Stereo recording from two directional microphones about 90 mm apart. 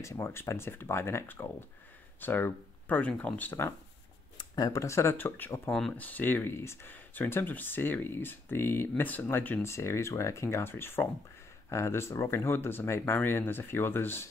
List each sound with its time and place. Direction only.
0.0 s speech: 30° left (ahead or behind)
4.4 s speech: 45° left (ahead or behind); by 5.6 s 20° left (ahead or behind)
5.7 s speech: 5° left (ahead or behind)
5.9 s speech: 20° left (ahead or behind)